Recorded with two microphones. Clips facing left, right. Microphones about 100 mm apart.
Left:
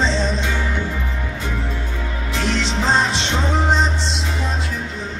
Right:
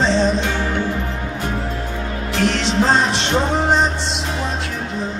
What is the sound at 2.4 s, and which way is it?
Music, 60° right (ahead or behind).